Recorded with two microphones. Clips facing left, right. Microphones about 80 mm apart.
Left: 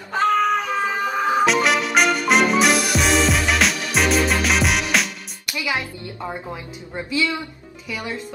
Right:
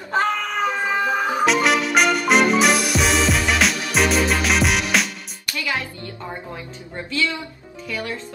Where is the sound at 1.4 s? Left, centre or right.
Centre.